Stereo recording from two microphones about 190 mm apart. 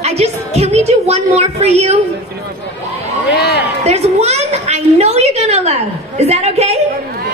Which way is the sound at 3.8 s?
35° right (ahead or behind).